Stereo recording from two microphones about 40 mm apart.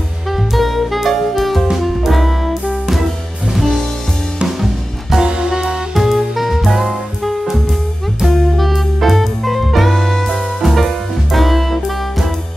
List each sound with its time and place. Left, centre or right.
0.3 s music: centre
3.5 s music: centre
5.2 s music: centre
5.9 s music: centre
8.3 s music: centre